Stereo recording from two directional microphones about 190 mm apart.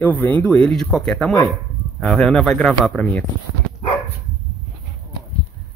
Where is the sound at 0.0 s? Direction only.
10° left (ahead or behind).